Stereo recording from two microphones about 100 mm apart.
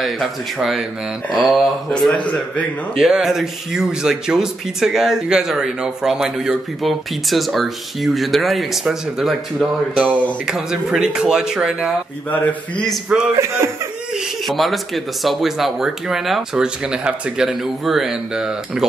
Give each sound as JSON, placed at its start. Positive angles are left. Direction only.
{"t": 0.0, "sound": "speech", "side_deg": 0}
{"t": 3.0, "sound": "speech", "side_deg": -5}
{"t": 12.3, "sound": "speech", "side_deg": 15}
{"t": 12.8, "sound": "speech", "side_deg": -5}